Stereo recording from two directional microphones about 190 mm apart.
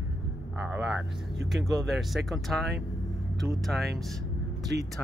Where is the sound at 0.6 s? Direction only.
5° right (ahead or behind).